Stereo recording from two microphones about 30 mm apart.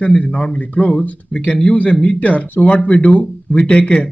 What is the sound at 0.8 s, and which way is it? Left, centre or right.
Speech, left.